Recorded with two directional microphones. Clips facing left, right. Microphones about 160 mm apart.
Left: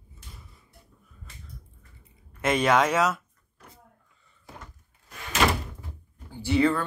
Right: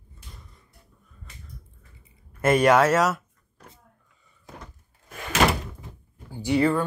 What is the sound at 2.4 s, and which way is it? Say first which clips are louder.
Speech: right 4 dB; 10° right (ahead or behind).